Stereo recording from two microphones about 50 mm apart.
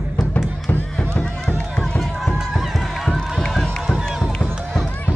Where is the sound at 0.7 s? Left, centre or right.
Left.